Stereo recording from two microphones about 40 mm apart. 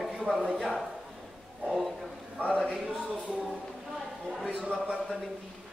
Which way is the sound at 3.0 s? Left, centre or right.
Right.